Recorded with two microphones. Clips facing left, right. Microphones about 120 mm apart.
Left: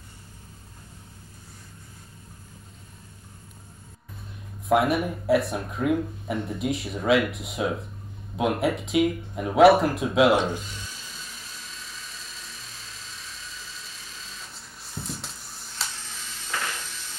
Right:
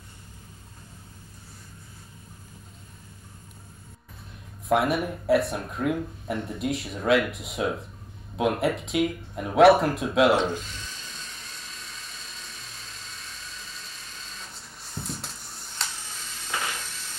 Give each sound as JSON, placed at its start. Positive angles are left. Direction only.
{"t": 4.6, "sound": "speech", "side_deg": 0}
{"t": 10.4, "sound": "dental drill", "side_deg": 5}
{"t": 16.4, "sound": "a sound", "side_deg": -20}